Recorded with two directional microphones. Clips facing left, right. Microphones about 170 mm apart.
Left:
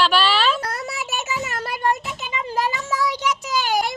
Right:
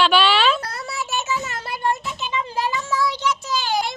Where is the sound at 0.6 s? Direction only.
45° left (ahead or behind).